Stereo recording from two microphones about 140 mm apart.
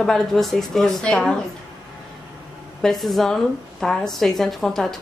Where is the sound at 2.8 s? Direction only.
Centre (ahead or behind).